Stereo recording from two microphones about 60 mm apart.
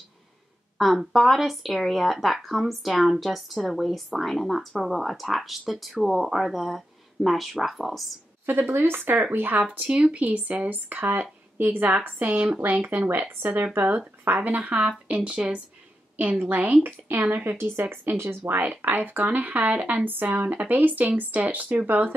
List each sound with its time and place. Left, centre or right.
0.7 s speech: centre
8.5 s speech: right
9.6 s speech: right
16.2 s speech: right
18.4 s speech: right